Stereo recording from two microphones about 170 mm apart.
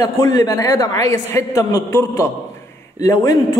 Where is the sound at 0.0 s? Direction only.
20° left (ahead or behind).